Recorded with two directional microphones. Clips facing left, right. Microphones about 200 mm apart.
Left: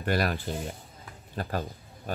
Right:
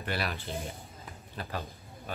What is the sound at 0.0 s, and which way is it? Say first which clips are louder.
A man's voice: left 7 dB; 40° left (ahead or behind).